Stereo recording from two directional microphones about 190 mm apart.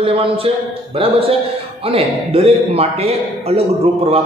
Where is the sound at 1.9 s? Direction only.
30° right (ahead or behind).